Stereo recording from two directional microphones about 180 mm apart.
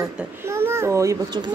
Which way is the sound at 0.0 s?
15° right (ahead or behind).